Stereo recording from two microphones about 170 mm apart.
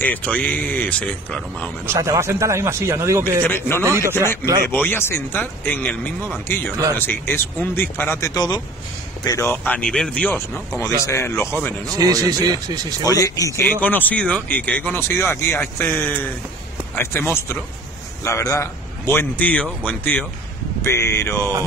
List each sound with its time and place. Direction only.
0.0 s speech: 10° left (ahead or behind)
1.9 s speech: 15° right (ahead or behind)
3.4 s speech: 15° left (ahead or behind)
3.8 s speech: 15° right (ahead or behind)
4.1 s speech: 15° left (ahead or behind)
11.9 s speech: 20° right (ahead or behind)
13.0 s speech: 20° left (ahead or behind)